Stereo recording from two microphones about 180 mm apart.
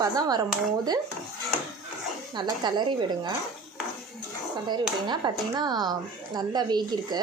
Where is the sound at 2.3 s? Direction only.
25° right (ahead or behind).